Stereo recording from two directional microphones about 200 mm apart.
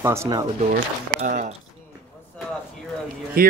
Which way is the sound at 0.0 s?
15° right (ahead or behind).